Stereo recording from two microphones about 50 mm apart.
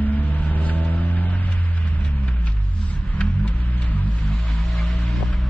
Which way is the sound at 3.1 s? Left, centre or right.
Left.